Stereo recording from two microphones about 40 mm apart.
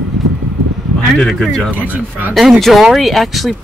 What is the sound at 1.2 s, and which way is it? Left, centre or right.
Speech, centre.